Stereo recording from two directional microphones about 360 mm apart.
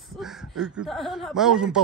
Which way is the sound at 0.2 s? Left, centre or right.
Centre.